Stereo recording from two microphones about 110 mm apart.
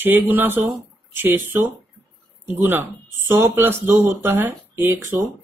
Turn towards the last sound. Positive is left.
turn(degrees=-20)  # may be behind; listen again after turning